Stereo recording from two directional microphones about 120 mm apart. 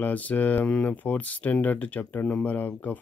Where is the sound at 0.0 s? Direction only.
15° left (ahead or behind).